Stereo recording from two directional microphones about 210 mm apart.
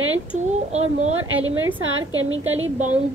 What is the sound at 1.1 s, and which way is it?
A woman's voice, 75° right (ahead or behind).